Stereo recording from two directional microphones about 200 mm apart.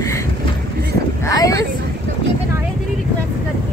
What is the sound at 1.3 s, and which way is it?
Speech, 15° left (ahead or behind).